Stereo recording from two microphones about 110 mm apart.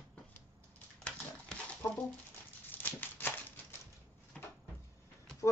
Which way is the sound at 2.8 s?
15° left (ahead or behind).